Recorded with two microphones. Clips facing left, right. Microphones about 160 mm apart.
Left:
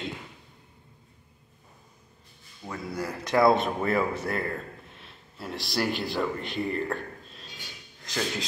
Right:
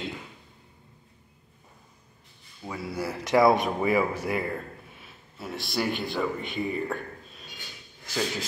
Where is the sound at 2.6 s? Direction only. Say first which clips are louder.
Right 1 dB; 10° right (ahead or behind).